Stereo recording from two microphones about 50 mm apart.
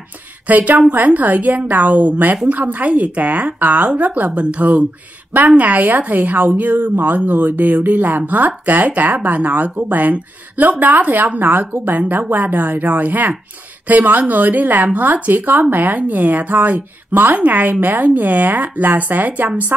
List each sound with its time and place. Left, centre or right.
0.5 s speech: right